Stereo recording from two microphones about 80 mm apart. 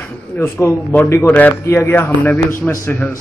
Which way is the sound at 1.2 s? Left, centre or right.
Left.